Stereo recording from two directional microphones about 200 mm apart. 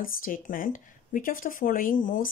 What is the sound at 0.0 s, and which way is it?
Speech, 45° left (ahead or behind).